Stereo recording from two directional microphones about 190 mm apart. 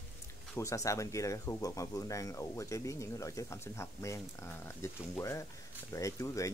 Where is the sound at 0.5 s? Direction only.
15° left (ahead or behind).